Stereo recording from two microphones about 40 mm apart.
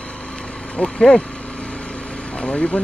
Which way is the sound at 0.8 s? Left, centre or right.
Left.